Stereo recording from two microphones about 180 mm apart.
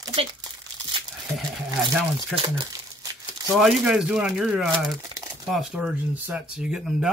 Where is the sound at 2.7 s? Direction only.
20° right (ahead or behind).